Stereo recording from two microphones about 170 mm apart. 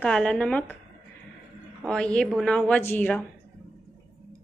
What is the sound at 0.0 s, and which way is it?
Speech, 5° left (ahead or behind).